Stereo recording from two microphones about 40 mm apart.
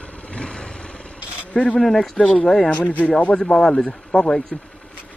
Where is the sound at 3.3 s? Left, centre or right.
Centre.